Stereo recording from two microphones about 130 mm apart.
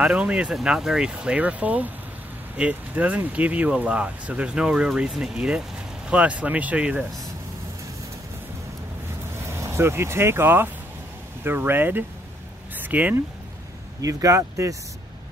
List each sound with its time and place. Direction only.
0.0 s speech: 10° right (ahead or behind)
9.5 s speech: 20° right (ahead or behind)
14.0 s speech: 25° right (ahead or behind)